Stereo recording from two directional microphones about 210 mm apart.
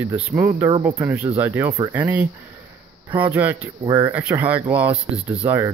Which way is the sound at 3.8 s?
20° right (ahead or behind).